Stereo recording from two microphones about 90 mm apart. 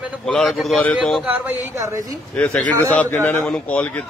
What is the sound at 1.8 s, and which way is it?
Speech, 40° right (ahead or behind).